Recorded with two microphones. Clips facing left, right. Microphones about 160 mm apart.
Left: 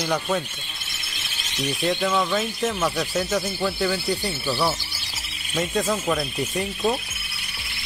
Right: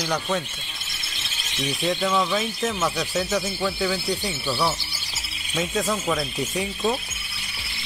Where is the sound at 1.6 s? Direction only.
Centre (ahead or behind).